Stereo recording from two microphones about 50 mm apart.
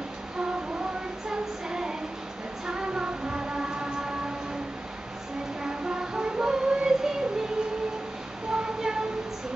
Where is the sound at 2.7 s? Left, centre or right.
Centre.